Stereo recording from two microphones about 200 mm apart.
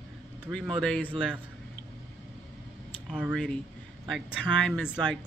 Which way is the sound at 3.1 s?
Centre (ahead or behind).